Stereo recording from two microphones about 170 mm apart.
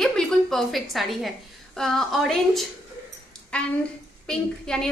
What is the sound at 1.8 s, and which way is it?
A woman's voice, centre (ahead or behind).